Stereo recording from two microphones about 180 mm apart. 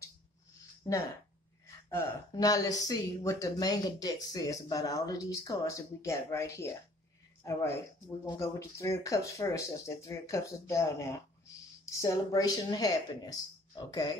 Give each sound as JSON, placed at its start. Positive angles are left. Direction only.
{"t": 0.8, "sound": "speech", "side_deg": 20}